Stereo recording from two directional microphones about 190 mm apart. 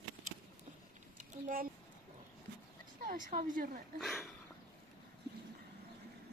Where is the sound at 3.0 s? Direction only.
45° right (ahead or behind).